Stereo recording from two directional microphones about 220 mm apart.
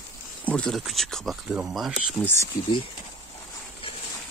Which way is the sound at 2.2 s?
10° left (ahead or behind).